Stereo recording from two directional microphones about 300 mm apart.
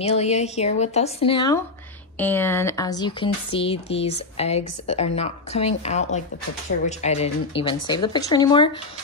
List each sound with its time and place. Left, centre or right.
0.0 s speech: left